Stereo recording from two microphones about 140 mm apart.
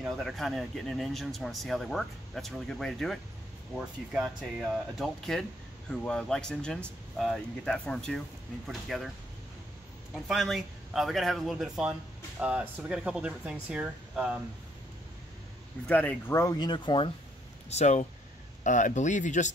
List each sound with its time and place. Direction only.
0.0 s a man's voice: centre (ahead or behind)
10.1 s a man's voice: centre (ahead or behind)
15.9 s speech: 10° left (ahead or behind)
16.5 s speech: 35° left (ahead or behind)
17.6 s speech: 55° left (ahead or behind)